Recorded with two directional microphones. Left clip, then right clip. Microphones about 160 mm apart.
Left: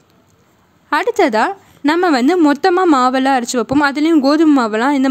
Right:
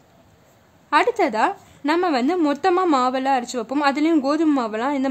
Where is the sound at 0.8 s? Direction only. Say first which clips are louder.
Left 4 dB; 30° left (ahead or behind).